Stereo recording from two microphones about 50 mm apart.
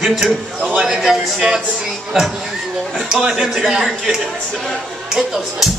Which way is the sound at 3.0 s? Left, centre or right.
Centre.